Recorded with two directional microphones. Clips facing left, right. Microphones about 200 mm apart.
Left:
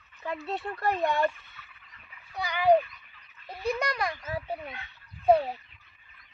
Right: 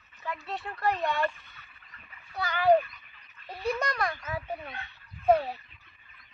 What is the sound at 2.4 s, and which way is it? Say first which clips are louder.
A child's voice: even; 15° left (ahead or behind).